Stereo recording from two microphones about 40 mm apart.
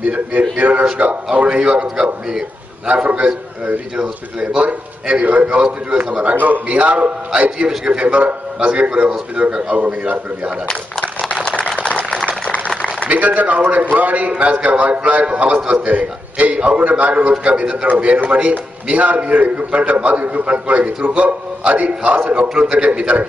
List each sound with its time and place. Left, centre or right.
0.0 s a man's voice: right
2.9 s a man's voice: right
3.9 s a man's voice: right
6.3 s a man's voice: right
10.7 s a sound: left
13.1 s a man's voice: right